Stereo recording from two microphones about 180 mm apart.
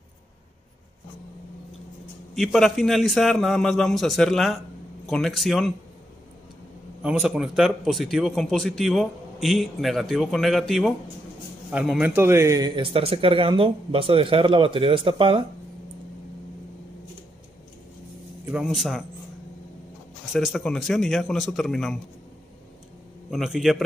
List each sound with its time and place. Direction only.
2.3 s speech: centre (ahead or behind)
7.0 s a man's voice: 5° right (ahead or behind); by 15.4 s 30° right (ahead or behind)
18.4 s speech: 5° right (ahead or behind)
20.3 s speech: centre (ahead or behind)
23.3 s speech: centre (ahead or behind)